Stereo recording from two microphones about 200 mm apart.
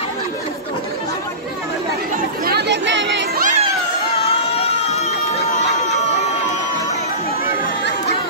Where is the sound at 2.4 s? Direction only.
55° right (ahead or behind).